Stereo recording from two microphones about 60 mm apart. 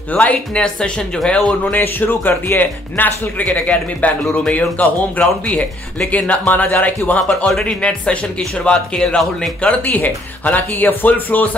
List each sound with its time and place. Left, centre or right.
0.1 s speech: left
1.6 s speech: left
5.2 s speech: centre; by 11.4 s left